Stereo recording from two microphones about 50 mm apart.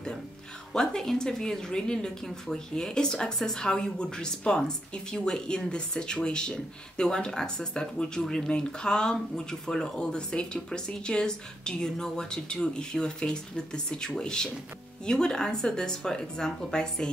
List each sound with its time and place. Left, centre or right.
0.7 s speech: centre